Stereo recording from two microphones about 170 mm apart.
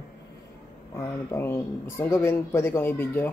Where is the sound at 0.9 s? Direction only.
15° left (ahead or behind).